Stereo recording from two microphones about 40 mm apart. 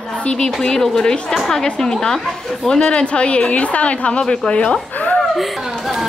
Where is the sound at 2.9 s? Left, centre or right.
Left.